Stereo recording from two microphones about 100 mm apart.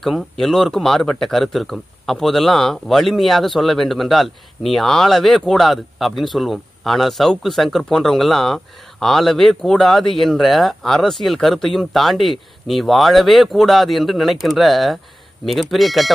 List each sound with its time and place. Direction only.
0.0 s speech: centre (ahead or behind)